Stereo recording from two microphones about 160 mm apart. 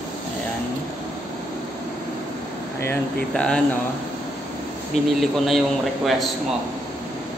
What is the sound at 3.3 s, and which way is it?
Speech, 5° left (ahead or behind).